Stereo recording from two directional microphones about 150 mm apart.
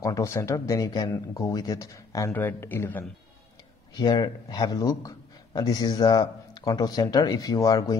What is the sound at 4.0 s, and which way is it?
Speech, 30° left (ahead or behind).